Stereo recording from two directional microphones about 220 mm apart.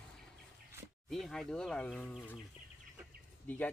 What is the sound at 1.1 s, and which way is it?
Speech, centre (ahead or behind).